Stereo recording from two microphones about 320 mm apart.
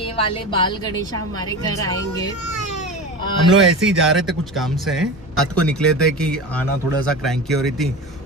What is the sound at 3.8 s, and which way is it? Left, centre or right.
Speech, centre.